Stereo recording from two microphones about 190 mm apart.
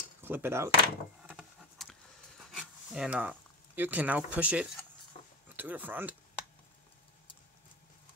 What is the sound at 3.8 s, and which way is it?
Speech, 10° right (ahead or behind).